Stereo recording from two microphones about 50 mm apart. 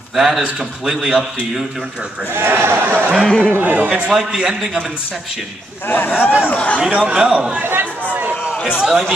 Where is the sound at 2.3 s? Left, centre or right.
Right.